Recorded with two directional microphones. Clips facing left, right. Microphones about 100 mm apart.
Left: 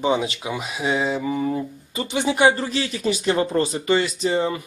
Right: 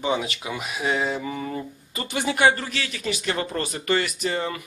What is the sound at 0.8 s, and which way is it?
Speech, 5° left (ahead or behind).